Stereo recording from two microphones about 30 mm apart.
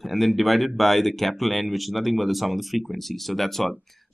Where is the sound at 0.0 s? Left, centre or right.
Centre.